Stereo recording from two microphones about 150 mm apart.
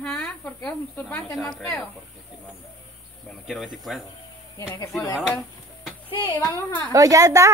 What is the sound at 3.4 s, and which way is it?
Speech, centre (ahead or behind).